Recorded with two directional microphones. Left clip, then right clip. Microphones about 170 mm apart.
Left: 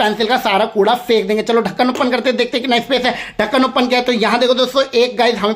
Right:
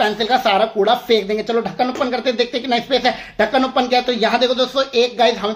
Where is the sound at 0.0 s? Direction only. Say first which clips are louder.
Left 1 dB; 25° left (ahead or behind).